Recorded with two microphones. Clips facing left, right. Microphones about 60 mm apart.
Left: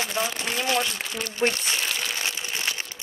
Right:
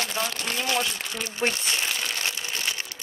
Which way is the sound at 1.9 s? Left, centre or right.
Centre.